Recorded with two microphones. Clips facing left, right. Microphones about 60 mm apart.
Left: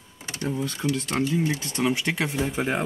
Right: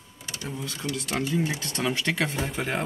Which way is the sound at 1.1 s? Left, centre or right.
Centre.